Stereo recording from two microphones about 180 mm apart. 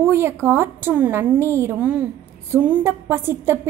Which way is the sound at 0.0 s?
15° right (ahead or behind).